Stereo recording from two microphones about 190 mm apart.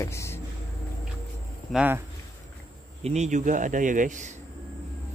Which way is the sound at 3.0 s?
35° right (ahead or behind).